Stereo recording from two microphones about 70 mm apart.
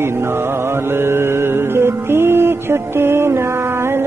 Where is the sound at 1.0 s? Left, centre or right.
Right.